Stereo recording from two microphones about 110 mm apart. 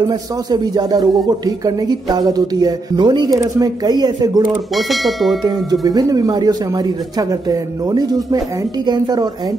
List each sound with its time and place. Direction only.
0.1 s a man's voice: 40° right (ahead or behind)
4.7 s speech: centre (ahead or behind)
5.4 s a man's voice: 35° right (ahead or behind)